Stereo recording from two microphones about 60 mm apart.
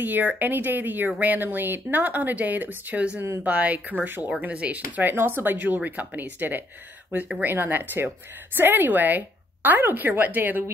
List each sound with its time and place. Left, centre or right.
0.0 s speech: right